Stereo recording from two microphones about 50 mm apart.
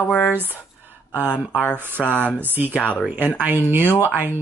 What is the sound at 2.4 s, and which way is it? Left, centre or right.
Speech, right.